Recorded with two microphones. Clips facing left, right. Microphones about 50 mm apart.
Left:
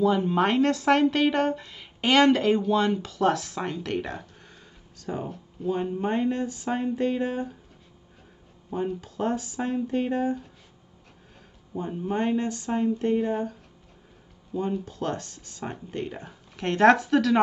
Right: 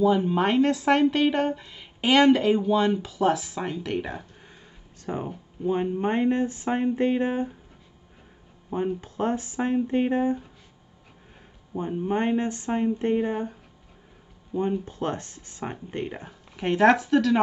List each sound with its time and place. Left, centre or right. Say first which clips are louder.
0.0 s a woman's voice: right 1 dB; centre
4.9 s speech: right 1 dB; right
8.7 s speech: right 2 dB; right
11.9 s speech: right 3 dB; centre
12.2 s speech: left 1 dB; right
16.5 s a woman's voice: even; centre